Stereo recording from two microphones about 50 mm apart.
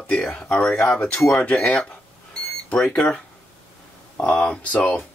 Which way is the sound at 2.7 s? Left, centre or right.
Centre.